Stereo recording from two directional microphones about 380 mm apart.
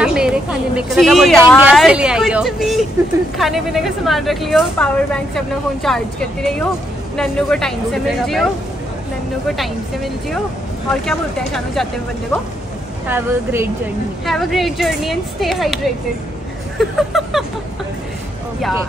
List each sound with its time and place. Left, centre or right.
0.0 s a woman's voice: centre
7.2 s a woman's voice: centre
10.9 s a woman's voice: centre
13.1 s a woman's voice: centre